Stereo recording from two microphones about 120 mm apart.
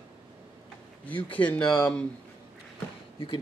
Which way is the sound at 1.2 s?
10° left (ahead or behind).